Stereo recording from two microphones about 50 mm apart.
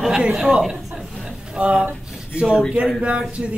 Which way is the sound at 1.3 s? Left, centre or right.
Right.